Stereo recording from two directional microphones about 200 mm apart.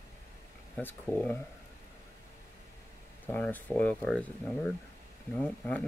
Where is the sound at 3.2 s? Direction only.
10° left (ahead or behind).